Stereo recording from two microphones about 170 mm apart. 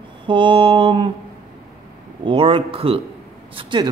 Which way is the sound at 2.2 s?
30° right (ahead or behind).